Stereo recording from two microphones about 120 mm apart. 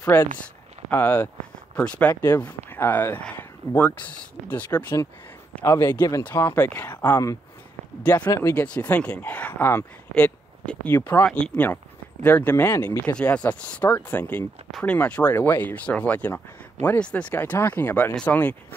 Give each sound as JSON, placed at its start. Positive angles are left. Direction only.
{"t": 0.1, "sound": "speech", "side_deg": 15}
{"t": 5.7, "sound": "speech", "side_deg": 25}
{"t": 8.0, "sound": "speech", "side_deg": 10}
{"t": 8.3, "sound": "speech", "side_deg": 25}
{"t": 8.5, "sound": "speech", "side_deg": 10}
{"t": 10.9, "sound": "speech", "side_deg": 20}
{"t": 11.2, "sound": "speech", "side_deg": 5}